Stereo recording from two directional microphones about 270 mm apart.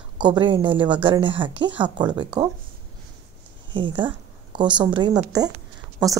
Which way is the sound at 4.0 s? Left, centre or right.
Centre.